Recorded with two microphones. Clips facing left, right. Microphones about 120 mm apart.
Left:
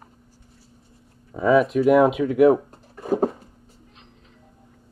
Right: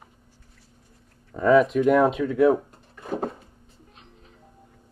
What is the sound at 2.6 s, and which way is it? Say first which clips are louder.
Drawer open or close: left 8 dB; 35° left (ahead or behind).